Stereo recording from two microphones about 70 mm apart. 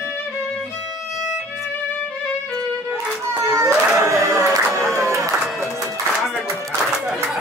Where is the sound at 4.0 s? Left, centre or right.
Right.